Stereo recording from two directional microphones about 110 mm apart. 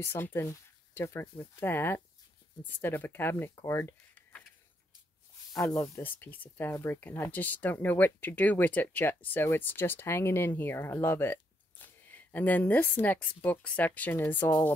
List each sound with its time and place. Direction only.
0.0 s speech: 20° left (ahead or behind)
4.1 s a sound: 10° left (ahead or behind)
5.8 s speech: 20° left (ahead or behind)